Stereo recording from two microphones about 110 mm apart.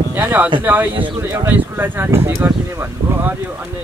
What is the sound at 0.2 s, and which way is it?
Speech, 20° right (ahead or behind).